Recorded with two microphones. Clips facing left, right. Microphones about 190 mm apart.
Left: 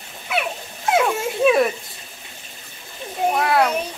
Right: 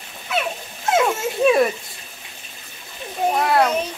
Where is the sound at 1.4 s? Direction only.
Centre (ahead or behind).